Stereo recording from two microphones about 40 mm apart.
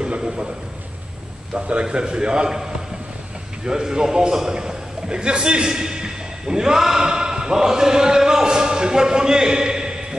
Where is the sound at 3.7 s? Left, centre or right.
Centre.